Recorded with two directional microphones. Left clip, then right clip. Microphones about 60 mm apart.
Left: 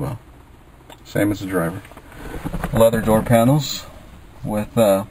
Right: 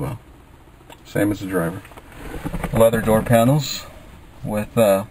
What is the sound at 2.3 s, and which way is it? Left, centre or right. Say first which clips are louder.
Vehicle: even; centre.